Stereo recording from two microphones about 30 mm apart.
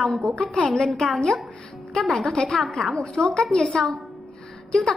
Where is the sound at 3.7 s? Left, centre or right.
Left.